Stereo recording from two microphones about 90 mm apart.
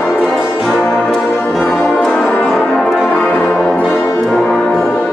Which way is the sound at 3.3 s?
15° left (ahead or behind).